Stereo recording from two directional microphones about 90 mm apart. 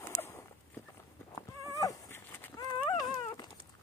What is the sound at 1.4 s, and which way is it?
Horse, 40° left (ahead or behind).